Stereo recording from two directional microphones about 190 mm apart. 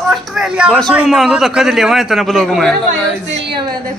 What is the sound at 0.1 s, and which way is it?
A man's voice, 5° right (ahead or behind).